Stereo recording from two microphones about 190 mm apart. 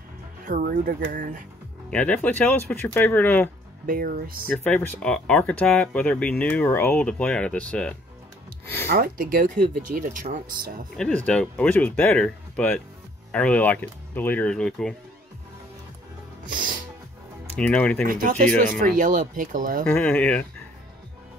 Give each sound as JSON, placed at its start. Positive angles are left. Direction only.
{"t": 0.5, "sound": "speech", "side_deg": -50}
{"t": 1.9, "sound": "speech", "side_deg": 10}
{"t": 3.8, "sound": "speech", "side_deg": -45}
{"t": 4.5, "sound": "speech", "side_deg": 10}
{"t": 8.8, "sound": "speech", "side_deg": -50}
{"t": 11.0, "sound": "speech", "side_deg": 5}
{"t": 16.4, "sound": "music", "side_deg": -45}
{"t": 17.6, "sound": "speech", "side_deg": 5}
{"t": 18.0, "sound": "speech", "side_deg": -45}
{"t": 19.9, "sound": "speech", "side_deg": 5}